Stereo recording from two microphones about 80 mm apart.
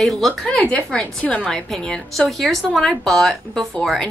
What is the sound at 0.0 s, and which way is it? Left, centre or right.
A woman's voice, centre.